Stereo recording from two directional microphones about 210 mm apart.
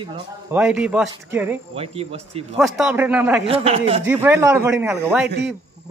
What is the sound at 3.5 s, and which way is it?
Speech, 30° right (ahead or behind).